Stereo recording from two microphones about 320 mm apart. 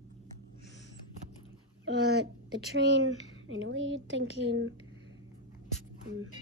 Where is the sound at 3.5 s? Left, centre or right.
Right.